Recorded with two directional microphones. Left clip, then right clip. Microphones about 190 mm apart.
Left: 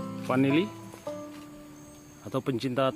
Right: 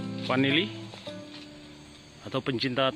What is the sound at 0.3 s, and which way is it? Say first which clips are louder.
Speech: even; 10° left (ahead or behind).